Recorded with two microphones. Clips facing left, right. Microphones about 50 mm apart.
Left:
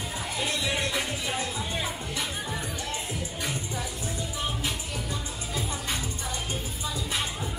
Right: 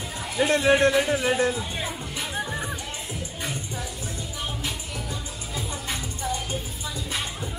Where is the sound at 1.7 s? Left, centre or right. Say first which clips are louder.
Even; centre.